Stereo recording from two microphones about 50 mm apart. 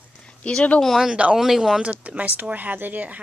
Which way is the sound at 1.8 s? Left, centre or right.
Right.